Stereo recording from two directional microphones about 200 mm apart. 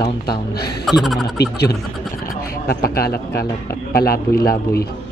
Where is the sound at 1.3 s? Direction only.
55° left (ahead or behind).